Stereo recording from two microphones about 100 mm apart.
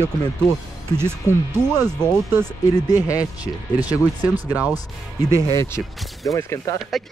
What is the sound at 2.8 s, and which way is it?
Speech, 35° left (ahead or behind).